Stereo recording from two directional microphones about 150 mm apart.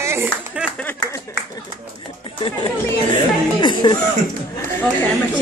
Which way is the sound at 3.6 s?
30° left (ahead or behind).